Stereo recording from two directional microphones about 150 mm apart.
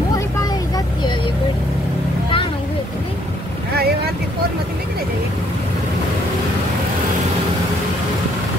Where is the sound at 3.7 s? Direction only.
90° right.